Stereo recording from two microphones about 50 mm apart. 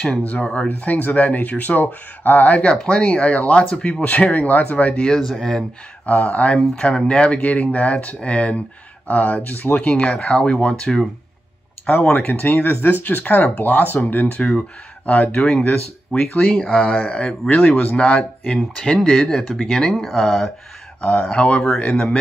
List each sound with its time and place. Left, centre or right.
0.1 s speech: left
2.7 s speech: centre
3.1 s speech: left
5.0 s speech: centre
6.0 s speech: left
16.3 s speech: centre
21.3 s speech: left